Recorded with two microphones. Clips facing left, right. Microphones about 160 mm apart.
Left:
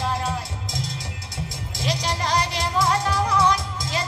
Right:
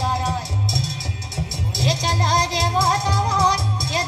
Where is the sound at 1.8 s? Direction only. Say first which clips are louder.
Right 3 dB; 90° right.